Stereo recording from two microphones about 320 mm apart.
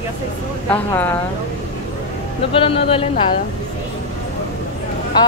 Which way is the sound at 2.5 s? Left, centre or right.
Centre.